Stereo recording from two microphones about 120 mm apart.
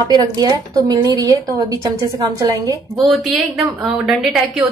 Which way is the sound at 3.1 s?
Centre (ahead or behind).